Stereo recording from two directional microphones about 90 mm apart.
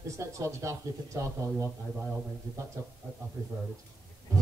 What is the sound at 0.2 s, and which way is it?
Speech, 35° right (ahead or behind).